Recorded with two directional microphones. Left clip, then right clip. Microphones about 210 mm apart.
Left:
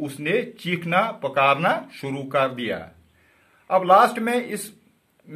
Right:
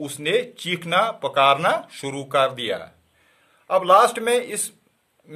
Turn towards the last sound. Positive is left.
turn(degrees=-45)  # may be behind; listen again after turning